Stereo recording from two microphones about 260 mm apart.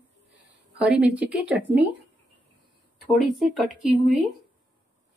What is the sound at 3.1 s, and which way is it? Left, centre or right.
Speech, centre.